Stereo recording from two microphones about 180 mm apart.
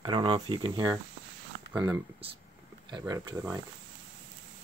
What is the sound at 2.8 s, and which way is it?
Speech, 20° right (ahead or behind).